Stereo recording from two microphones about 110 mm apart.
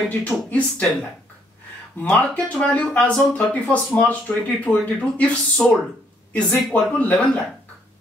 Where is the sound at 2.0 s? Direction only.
10° left (ahead or behind).